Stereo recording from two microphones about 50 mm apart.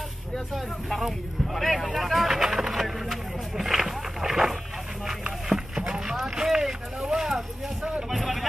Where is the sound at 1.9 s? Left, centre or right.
Centre.